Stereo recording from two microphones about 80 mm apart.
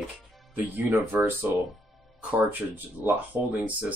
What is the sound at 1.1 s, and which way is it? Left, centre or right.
Speech, right.